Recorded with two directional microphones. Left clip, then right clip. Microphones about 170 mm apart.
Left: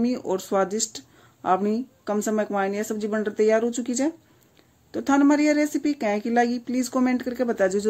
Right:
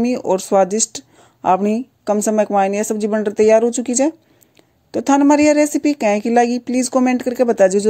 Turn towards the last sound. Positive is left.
turn(degrees=-40)  # may be behind; listen again after turning